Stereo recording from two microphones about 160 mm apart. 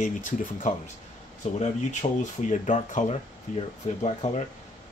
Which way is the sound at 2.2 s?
50° left (ahead or behind).